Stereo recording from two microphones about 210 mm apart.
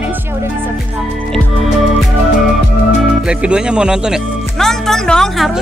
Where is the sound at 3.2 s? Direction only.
5° right (ahead or behind).